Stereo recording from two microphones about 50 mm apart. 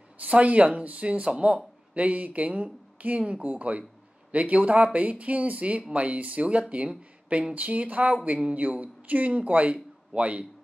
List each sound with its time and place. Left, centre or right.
0.2 s speech: right